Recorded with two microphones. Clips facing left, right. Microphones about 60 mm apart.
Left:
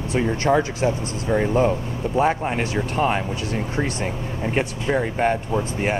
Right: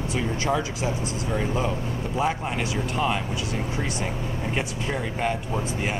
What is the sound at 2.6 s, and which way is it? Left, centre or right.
Speech, left.